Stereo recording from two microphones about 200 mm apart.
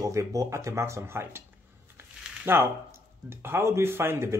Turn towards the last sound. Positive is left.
turn(degrees=-10)  # may be behind; listen again after turning